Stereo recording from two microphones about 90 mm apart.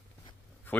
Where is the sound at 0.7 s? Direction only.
15° left (ahead or behind).